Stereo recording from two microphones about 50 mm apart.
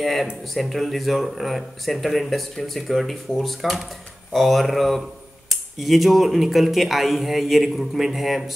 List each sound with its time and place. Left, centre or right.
0.0 s speech: centre